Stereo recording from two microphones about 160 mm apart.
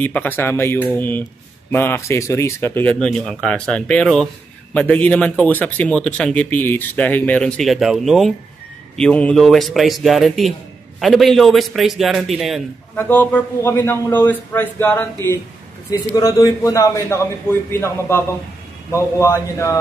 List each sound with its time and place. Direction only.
0.0 s a man's voice: 10° left (ahead or behind)
12.9 s a man's voice: 10° left (ahead or behind)